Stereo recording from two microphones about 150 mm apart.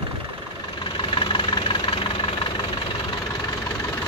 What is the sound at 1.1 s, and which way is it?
Vehicle, 35° left (ahead or behind).